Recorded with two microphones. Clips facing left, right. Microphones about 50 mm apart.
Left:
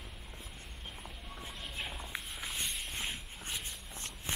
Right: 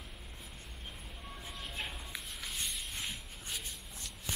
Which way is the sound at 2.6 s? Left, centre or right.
Centre.